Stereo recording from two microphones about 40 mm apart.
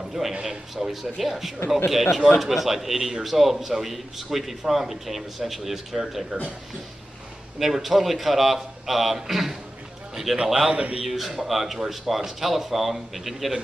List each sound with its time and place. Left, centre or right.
0.3 s a man's voice: centre
7.5 s a man's voice: centre
10.3 s a man's voice: centre
10.7 s a man's voice: right
11.1 s a man's voice: centre